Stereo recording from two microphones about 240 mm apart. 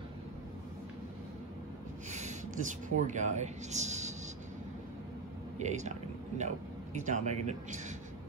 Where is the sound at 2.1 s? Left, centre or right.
Right.